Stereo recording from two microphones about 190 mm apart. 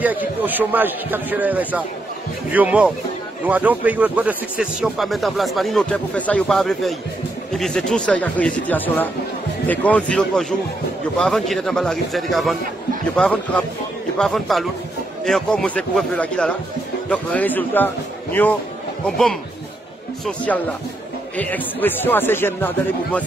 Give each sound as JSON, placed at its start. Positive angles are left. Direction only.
{"t": 0.0, "sound": "a man's voice", "side_deg": -10}